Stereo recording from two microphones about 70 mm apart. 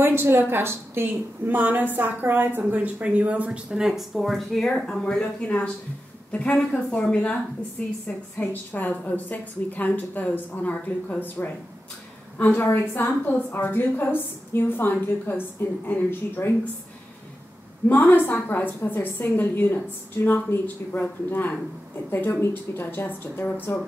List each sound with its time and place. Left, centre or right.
0.0 s a woman's voice: right; by 12.6 s left
12.6 s a woman's voice: left
17.8 s a woman's voice: left